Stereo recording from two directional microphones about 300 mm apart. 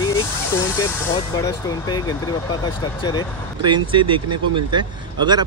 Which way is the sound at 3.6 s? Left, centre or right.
Centre.